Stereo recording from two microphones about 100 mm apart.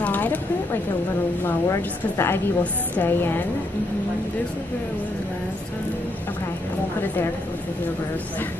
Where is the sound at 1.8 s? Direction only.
20° left (ahead or behind).